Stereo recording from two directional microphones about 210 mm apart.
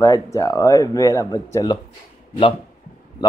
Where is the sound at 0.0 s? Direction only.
15° left (ahead or behind).